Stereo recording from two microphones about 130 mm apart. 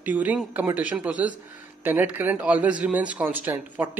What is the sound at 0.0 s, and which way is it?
Speech, 10° right (ahead or behind).